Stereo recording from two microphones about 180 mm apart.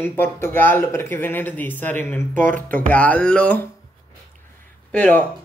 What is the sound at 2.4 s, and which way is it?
Speech, 45° right (ahead or behind).